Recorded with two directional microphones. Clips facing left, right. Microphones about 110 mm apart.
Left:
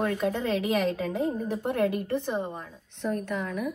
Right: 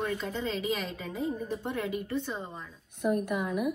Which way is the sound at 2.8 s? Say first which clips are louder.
Right 2 dB; 10° right (ahead or behind).